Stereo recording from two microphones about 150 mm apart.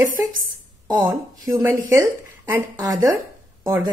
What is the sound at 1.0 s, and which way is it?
A woman's voice, 25° right (ahead or behind).